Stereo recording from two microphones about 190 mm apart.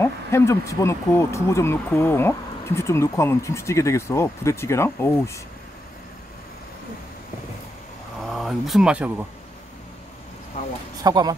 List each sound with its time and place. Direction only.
0.0 s speech: 15° left (ahead or behind)
8.3 s speech: centre (ahead or behind)
11.0 s speech: 20° right (ahead or behind)